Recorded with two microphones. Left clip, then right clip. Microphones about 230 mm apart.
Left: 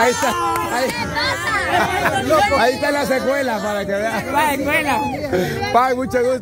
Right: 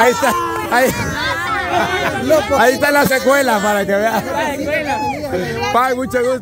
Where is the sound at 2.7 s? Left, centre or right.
Right.